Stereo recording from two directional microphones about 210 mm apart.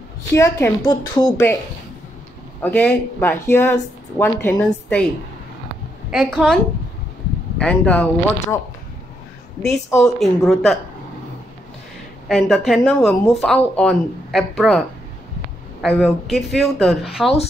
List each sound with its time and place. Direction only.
0.3 s a woman's voice: 15° left (ahead or behind)
2.6 s a woman's voice: 10° left (ahead or behind)
6.0 s speech: centre (ahead or behind)
10.0 s speech: centre (ahead or behind)
12.3 s speech: centre (ahead or behind)
15.8 s speech: centre (ahead or behind)